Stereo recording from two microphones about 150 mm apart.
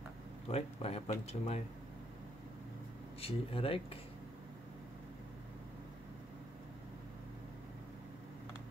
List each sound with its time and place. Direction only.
0.5 s speech: 45° left (ahead or behind)
3.2 s speech: 40° left (ahead or behind)